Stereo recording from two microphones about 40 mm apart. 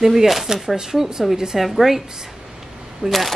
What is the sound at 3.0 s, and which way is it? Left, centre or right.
Speech, centre.